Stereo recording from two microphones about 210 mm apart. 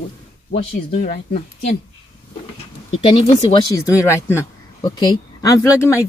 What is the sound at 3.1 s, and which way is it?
Speech, 25° left (ahead or behind).